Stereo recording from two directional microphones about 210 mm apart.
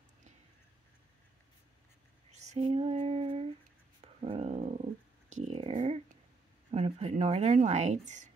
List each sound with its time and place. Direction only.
2.3 s a sound: 35° right (ahead or behind)
4.0 s dog: 30° right (ahead or behind)
6.7 s speech: 30° right (ahead or behind)